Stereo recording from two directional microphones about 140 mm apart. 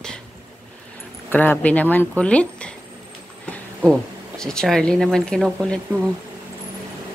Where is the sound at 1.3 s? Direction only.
15° left (ahead or behind).